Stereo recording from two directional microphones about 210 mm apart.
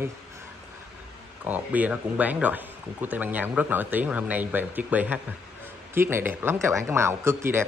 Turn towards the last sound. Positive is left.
turn(degrees=-10)  # may be behind; listen again after turning